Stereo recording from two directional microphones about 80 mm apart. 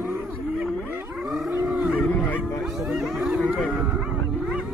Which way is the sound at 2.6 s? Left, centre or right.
Centre.